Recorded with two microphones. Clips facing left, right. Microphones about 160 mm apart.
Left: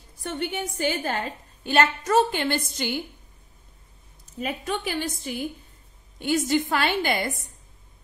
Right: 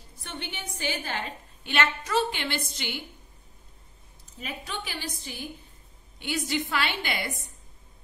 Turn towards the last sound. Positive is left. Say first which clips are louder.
# left 6 dB
turn(degrees=45)  # may be behind; listen again after turning